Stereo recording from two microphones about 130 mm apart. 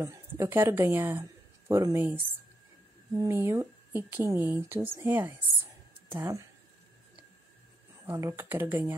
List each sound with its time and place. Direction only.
0.0 s speech: 20° right (ahead or behind)
8.1 s speech: 25° right (ahead or behind)